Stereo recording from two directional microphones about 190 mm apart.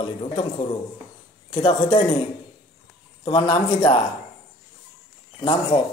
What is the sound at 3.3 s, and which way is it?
Speech, 30° left (ahead or behind).